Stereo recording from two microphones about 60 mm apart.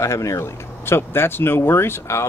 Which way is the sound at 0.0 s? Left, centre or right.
Left.